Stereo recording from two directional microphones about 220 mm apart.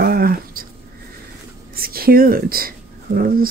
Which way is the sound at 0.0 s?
45° right (ahead or behind).